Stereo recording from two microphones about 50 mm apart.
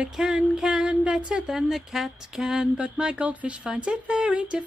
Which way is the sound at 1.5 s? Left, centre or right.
Centre.